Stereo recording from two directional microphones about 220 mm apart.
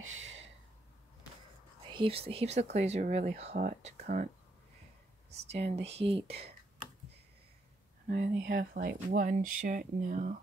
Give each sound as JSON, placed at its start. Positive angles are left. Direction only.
{"t": 0.0, "sound": "a sound", "side_deg": -60}
{"t": 1.9, "sound": "speech", "side_deg": -25}
{"t": 5.7, "sound": "speech", "side_deg": -25}
{"t": 8.4, "sound": "speech", "side_deg": -50}